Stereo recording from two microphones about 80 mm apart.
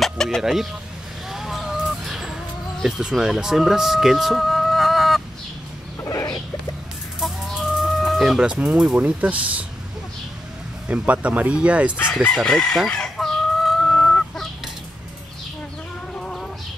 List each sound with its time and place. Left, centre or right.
0.0 s a sound: centre
0.4 s speech: centre
1.3 s a sound: centre
2.8 s speech: centre
6.0 s chicken: left
7.2 s chicken: centre
8.1 s speech: centre
10.9 s speech: centre
12.4 s crowing: centre
12.9 s chicken: centre
16.2 s chicken: centre